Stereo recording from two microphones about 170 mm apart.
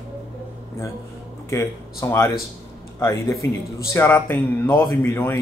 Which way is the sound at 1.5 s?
15° left (ahead or behind).